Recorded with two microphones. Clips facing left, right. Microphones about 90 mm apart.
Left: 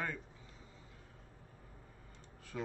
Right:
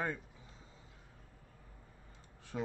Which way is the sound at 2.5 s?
25° right (ahead or behind).